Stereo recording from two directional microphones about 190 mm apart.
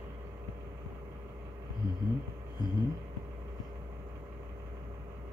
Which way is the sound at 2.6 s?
20° left (ahead or behind).